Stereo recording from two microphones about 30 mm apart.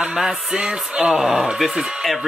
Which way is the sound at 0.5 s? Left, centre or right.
Right.